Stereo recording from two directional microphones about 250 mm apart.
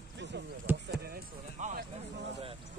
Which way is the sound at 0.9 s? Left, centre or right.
Right.